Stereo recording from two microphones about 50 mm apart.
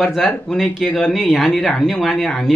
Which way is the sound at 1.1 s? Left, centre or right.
Centre.